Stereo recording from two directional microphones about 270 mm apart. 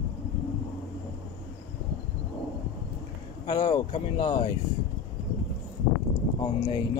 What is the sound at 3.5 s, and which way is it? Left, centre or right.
Speech, centre.